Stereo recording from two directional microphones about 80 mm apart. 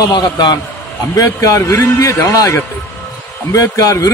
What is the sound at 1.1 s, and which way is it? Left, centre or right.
A man's voice, left.